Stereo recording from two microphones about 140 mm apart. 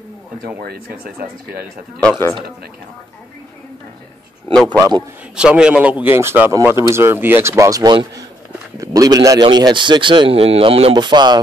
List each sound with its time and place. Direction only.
0.6 s speech: 90° right
2.0 s speech: 20° left (ahead or behind)
4.6 s a man's voice: 30° right (ahead or behind)
5.3 s a man's voice: 5° right (ahead or behind); by 11.4 s 30° right (ahead or behind)